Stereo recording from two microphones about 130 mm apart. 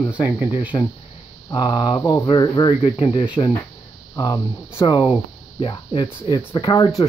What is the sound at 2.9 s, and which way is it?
Speech, 45° left (ahead or behind).